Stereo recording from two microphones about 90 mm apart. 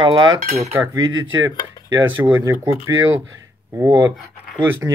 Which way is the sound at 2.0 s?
25° right (ahead or behind).